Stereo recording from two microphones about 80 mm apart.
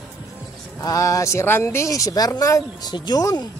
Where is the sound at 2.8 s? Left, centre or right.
Left.